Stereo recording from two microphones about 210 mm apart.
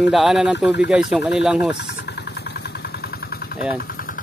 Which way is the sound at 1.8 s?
55° left (ahead or behind).